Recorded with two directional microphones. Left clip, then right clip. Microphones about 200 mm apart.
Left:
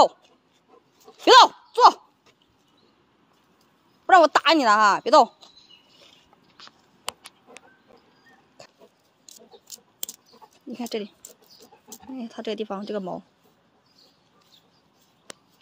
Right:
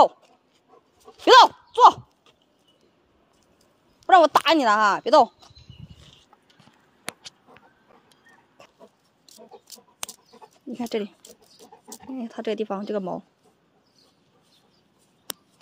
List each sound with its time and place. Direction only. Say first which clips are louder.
1.0 s goat: even; centre (ahead or behind)
4.0 s speech: even; 5° left (ahead or behind)
10.4 s speech: right 2 dB; 15° right (ahead or behind)